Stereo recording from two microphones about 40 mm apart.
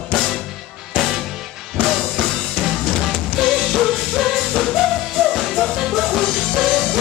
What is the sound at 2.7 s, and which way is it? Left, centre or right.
Music, centre.